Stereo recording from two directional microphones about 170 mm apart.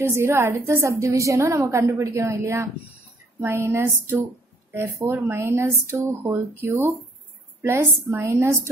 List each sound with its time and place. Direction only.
0.0 s a woman's voice: 15° right (ahead or behind)